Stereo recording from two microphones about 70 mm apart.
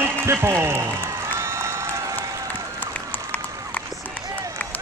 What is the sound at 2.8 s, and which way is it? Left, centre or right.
Run, left.